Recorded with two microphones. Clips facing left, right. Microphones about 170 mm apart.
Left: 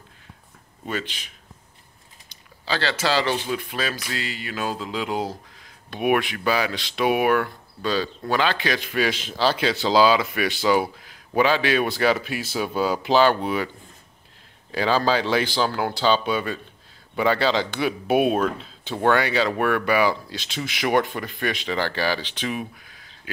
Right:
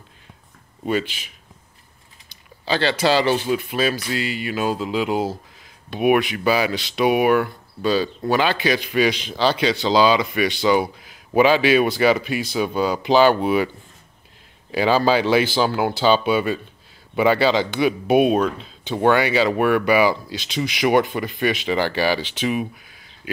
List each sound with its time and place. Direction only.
0.8 s speech: 10° right (ahead or behind)
2.6 s speech: 20° right (ahead or behind); by 10.8 s 5° left (ahead or behind)
10.8 s speech: 10° right (ahead or behind)
14.7 s speech: 10° right (ahead or behind)
23.2 s a sound: 15° right (ahead or behind)